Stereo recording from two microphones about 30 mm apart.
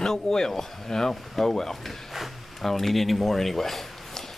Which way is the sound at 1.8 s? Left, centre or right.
Centre.